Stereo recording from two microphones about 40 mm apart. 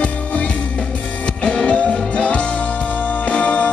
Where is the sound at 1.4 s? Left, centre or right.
Centre.